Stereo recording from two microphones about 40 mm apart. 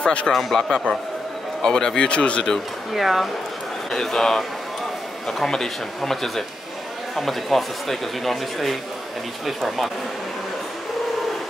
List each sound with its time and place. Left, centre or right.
0.0 s speech: left
0.3 s a man's voice: centre
0.7 s a man's voice: centre
2.0 s speech: left
2.9 s a man's voice: centre
3.9 s a man's voice: centre